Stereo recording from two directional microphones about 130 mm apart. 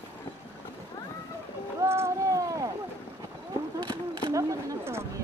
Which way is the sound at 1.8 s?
20° right (ahead or behind).